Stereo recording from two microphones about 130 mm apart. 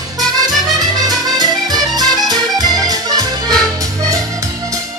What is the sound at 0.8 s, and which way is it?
Music, 30° right (ahead or behind).